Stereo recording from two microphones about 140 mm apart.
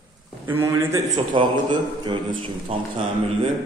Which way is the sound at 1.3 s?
35° right (ahead or behind).